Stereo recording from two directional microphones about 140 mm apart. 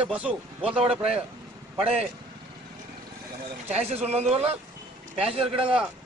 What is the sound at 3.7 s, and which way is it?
Speech, 50° right (ahead or behind).